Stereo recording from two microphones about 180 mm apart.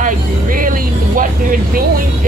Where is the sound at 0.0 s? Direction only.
50° right (ahead or behind).